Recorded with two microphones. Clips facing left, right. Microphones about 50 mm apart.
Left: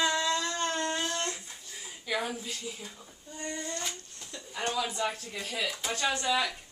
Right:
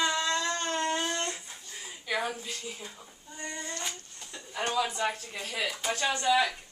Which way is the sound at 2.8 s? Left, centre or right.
Centre.